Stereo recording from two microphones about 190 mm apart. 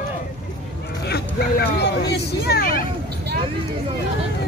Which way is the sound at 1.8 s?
60° left (ahead or behind).